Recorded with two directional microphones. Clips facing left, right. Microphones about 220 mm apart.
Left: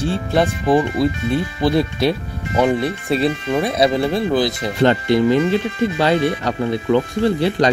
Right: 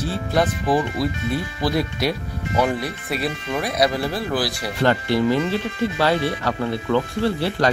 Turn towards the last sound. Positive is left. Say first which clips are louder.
# left 4 dB
turn(degrees=20)  # may be behind; listen again after turning